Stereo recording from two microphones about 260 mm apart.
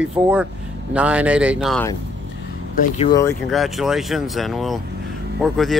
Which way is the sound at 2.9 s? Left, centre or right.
Centre.